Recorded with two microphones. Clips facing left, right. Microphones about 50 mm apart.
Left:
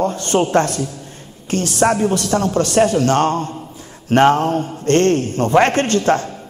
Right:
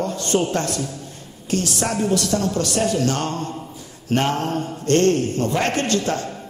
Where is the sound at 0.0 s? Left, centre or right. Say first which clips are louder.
Left 4 dB; left.